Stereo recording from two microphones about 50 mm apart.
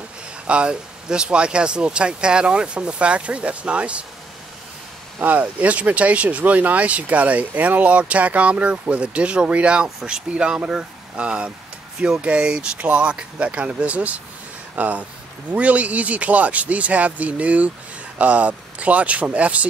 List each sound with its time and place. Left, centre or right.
0.5 s speech: right
5.2 s speech: right